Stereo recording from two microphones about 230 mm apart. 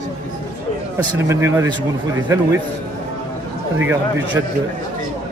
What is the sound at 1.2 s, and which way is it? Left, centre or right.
Speech, centre.